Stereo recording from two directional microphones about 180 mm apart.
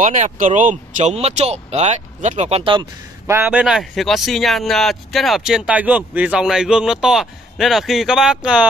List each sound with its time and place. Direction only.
0.0 s speech: 45° right (ahead or behind); by 2.9 s 30° right (ahead or behind)
3.3 s speech: 10° right (ahead or behind)